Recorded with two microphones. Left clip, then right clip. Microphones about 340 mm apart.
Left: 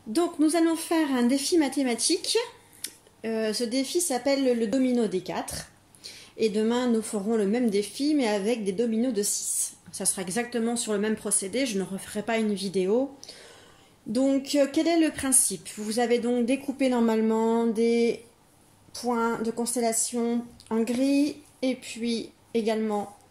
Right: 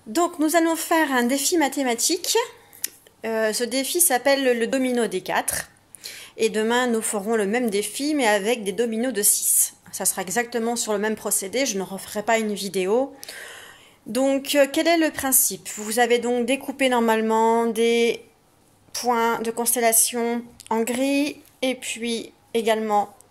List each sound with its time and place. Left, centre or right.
0.1 s a woman's voice: centre
14.1 s a woman's voice: right